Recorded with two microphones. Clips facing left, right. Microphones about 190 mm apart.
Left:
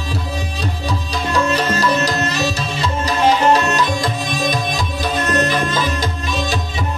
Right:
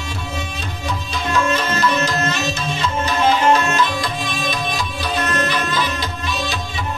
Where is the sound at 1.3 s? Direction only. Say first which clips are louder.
Left 2 dB; 35° left (ahead or behind).